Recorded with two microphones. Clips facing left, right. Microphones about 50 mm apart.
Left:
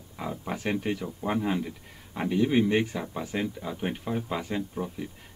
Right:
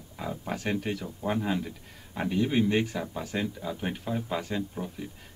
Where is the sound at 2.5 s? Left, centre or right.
Centre.